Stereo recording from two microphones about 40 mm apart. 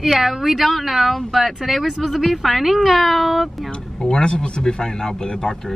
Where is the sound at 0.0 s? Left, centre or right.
Centre.